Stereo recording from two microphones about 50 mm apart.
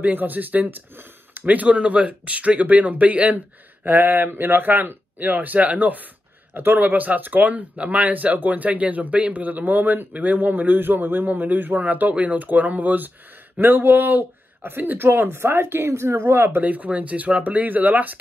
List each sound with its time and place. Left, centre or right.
0.0 s speech: right
16.6 s speech: right